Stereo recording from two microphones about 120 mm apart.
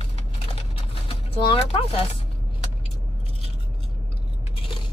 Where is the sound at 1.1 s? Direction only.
50° left (ahead or behind).